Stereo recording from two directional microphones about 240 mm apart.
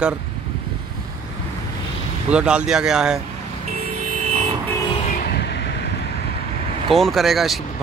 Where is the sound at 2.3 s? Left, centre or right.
Centre.